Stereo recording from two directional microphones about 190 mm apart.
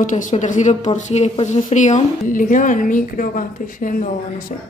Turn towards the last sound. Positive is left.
turn(degrees=45)  # may be behind; listen again after turning